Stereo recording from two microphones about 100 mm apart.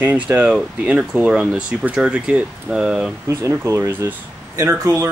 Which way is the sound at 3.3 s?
30° right (ahead or behind).